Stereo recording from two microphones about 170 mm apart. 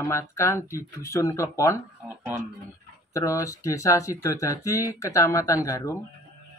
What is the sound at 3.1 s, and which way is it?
Speech, 20° left (ahead or behind).